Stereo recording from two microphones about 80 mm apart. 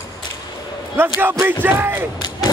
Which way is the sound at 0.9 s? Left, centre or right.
Right.